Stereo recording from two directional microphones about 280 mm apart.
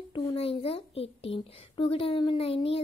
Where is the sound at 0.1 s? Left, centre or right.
Centre.